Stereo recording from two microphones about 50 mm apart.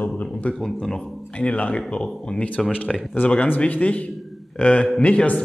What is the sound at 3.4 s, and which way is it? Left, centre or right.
Speech, left.